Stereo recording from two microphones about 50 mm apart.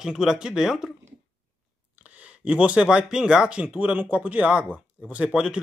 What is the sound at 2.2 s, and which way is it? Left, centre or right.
Speech, right.